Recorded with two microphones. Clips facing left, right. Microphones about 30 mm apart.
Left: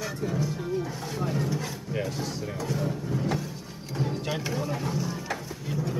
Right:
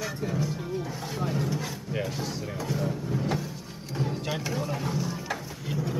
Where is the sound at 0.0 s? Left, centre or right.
Centre.